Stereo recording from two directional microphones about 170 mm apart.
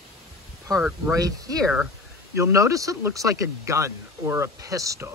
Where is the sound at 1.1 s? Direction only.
20° right (ahead or behind).